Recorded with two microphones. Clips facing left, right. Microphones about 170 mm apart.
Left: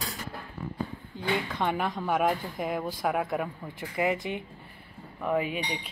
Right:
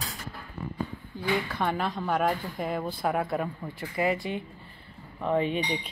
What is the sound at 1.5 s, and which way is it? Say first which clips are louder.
Speech: even; 15° left (ahead or behind).